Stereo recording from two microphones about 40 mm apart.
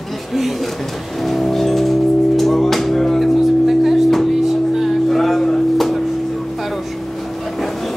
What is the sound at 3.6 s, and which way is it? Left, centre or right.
Music, centre.